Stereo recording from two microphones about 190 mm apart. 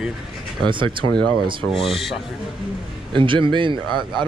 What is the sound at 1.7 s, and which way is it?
Speech, centre (ahead or behind).